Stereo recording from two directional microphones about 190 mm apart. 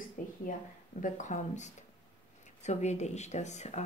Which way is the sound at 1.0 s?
40° left (ahead or behind).